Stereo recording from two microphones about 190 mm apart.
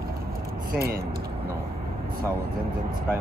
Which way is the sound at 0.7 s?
55° right (ahead or behind).